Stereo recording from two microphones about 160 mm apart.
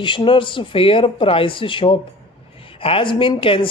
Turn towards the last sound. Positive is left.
turn(degrees=35)  # may be behind; listen again after turning